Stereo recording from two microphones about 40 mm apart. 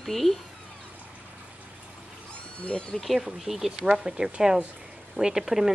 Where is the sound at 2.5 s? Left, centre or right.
Left.